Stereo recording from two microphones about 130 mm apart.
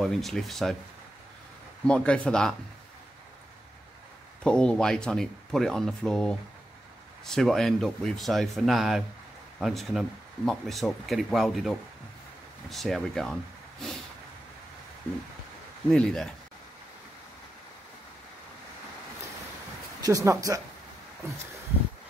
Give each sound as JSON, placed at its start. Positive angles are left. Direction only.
{"t": 0.0, "sound": "speech", "side_deg": 0}
{"t": 1.9, "sound": "speech", "side_deg": 10}
{"t": 4.4, "sound": "speech", "side_deg": 5}
{"t": 15.9, "sound": "speech", "side_deg": 5}
{"t": 20.0, "sound": "speech", "side_deg": -25}